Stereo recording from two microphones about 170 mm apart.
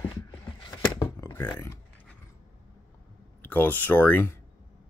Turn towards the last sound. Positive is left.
turn(degrees=10)  # may be behind; listen again after turning